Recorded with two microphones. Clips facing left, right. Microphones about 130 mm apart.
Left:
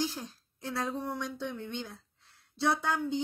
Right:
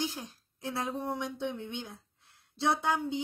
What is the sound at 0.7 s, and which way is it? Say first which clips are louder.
Speech: even; 20° right (ahead or behind).